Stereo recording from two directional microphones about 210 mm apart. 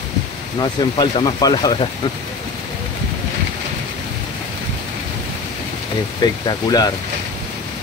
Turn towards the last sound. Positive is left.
turn(degrees=20)  # may be behind; listen again after turning